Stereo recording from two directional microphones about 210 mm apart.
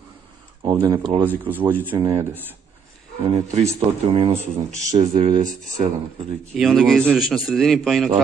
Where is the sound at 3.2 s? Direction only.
25° right (ahead or behind).